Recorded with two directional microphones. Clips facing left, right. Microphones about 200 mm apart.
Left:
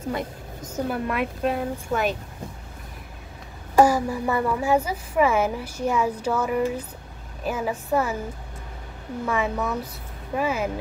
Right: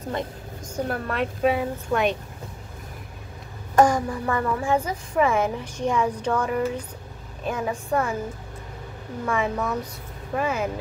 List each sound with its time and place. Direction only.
0.7 s a woman's voice: 10° left (ahead or behind)
1.4 s speech: centre (ahead or behind)
3.7 s a woman's voice: 5° left (ahead or behind)
9.2 s speech: 5° left (ahead or behind)